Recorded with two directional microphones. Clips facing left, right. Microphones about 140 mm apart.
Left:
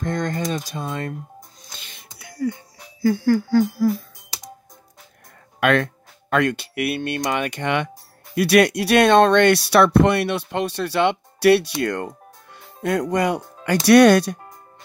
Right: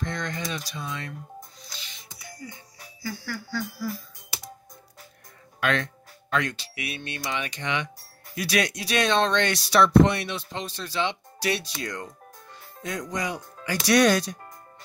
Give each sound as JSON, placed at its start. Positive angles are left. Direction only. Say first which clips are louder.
{"t": 0.0, "sound": "speech", "louder": "left 7 dB", "side_deg": 50}
{"t": 1.7, "sound": "music", "louder": "left 2 dB", "side_deg": 55}
{"t": 3.0, "sound": "speech", "louder": "left 17 dB", "side_deg": 50}
{"t": 5.6, "sound": "speech", "louder": "left 8 dB", "side_deg": 55}